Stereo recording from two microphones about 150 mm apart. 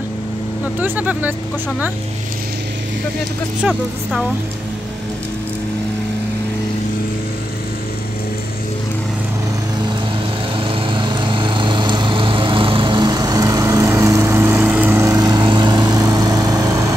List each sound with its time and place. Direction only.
0.7 s speech: 10° right (ahead or behind)
3.6 s speech: 5° right (ahead or behind)
10.6 s lawn mower: 35° right (ahead or behind)